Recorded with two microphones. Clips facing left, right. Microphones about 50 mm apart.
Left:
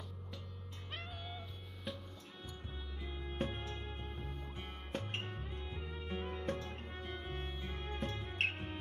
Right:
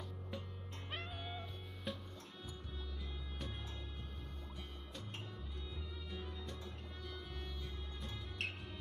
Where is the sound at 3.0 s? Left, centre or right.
Left.